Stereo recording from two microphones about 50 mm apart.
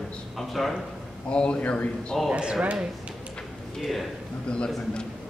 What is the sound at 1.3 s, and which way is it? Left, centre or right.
Speech, left.